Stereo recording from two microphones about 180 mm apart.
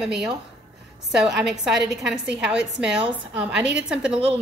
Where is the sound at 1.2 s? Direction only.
5° right (ahead or behind).